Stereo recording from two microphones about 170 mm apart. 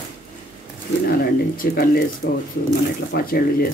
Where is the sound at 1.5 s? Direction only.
60° left (ahead or behind).